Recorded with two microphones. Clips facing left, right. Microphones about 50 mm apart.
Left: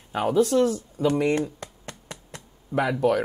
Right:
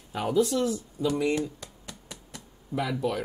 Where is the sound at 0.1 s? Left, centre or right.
Left.